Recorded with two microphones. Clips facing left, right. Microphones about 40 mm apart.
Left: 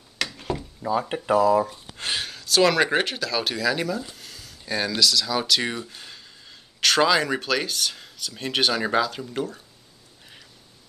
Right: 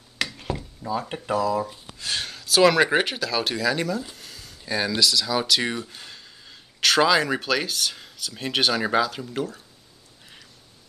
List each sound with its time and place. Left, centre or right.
0.2 s a sound: centre
0.6 s speech: centre
2.1 s speech: centre